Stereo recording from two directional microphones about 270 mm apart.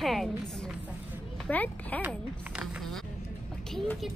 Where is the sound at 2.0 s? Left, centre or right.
Centre.